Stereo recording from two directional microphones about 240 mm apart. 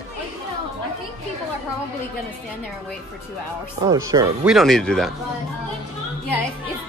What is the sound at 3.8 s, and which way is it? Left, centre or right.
Speech, centre.